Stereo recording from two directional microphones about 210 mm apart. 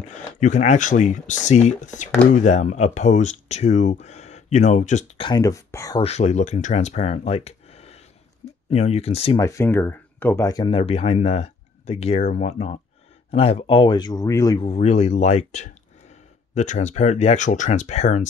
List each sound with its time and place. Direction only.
0.1 s speech: 35° left (ahead or behind); by 6.0 s 15° left (ahead or behind)
6.0 s speech: 30° left (ahead or behind)
9.4 s speech: 15° left (ahead or behind); by 18.2 s 35° left (ahead or behind)